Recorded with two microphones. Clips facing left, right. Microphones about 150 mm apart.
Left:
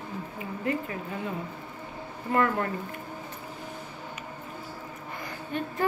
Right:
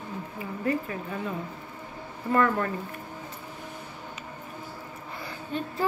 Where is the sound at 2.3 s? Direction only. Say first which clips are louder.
Right 1 dB; 25° left (ahead or behind).